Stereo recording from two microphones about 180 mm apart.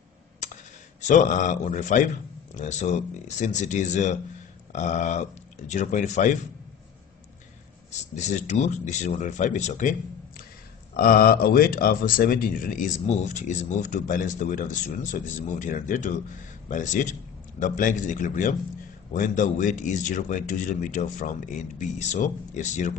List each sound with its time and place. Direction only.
1.0 s speech: 45° left (ahead or behind)
7.9 s speech: 40° left (ahead or behind)